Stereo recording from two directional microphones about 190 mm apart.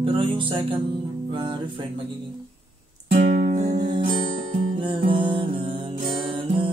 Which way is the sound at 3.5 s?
40° right (ahead or behind).